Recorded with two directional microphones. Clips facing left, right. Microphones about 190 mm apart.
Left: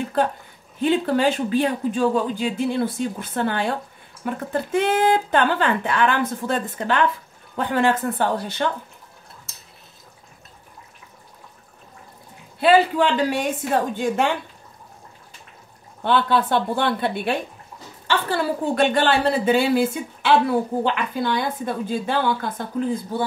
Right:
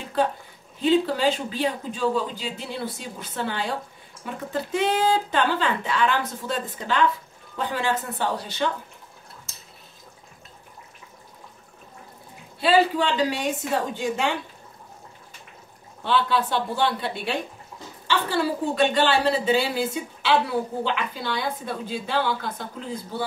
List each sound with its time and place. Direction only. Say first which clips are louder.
0.8 s a woman's voice: left 1 dB; 55° left (ahead or behind)
12.5 s a woman's voice: left 3 dB; 55° left (ahead or behind)
16.0 s a woman's voice: left 3 dB; 55° left (ahead or behind)